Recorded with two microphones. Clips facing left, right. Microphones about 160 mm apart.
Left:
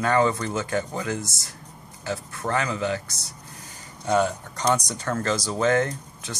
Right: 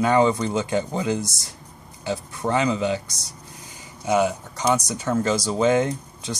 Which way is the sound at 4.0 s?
5° right (ahead or behind).